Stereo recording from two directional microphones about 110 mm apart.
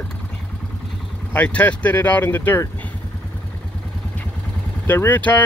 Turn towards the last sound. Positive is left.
turn(degrees=15)  # may be behind; listen again after turning